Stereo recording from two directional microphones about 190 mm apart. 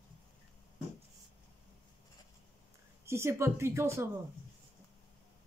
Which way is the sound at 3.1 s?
15° right (ahead or behind).